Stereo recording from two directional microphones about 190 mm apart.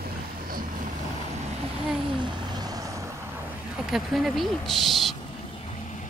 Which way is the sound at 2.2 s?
20° right (ahead or behind).